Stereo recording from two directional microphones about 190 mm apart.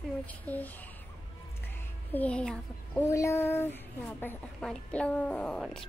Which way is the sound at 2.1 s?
5° left (ahead or behind).